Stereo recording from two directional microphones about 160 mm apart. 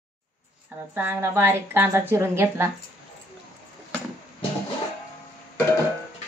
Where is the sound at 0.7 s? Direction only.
15° right (ahead or behind).